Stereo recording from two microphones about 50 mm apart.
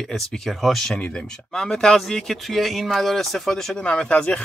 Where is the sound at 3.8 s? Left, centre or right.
Left.